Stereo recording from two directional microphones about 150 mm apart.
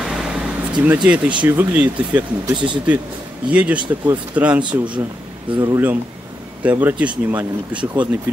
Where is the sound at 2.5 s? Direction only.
30° right (ahead or behind).